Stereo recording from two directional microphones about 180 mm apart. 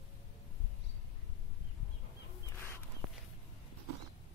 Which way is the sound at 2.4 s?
15° left (ahead or behind).